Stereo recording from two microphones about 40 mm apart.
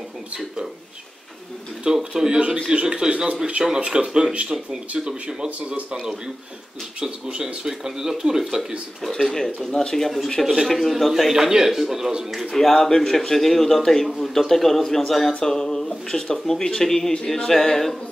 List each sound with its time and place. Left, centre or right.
1.9 s speech: centre
7.0 s speech: right
9.1 s a man's voice: centre
10.4 s speech: centre
10.7 s a man's voice: centre
11.3 s speech: centre
12.5 s a man's voice: centre